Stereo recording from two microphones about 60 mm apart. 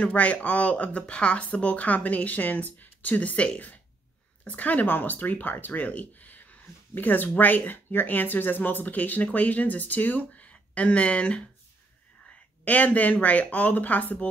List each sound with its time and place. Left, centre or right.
0.0 s speech: left
12.6 s speech: left